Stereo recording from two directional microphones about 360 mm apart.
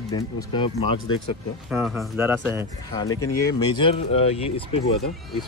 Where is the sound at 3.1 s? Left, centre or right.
Left.